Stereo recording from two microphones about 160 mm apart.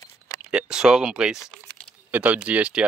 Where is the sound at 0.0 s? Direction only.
20° left (ahead or behind).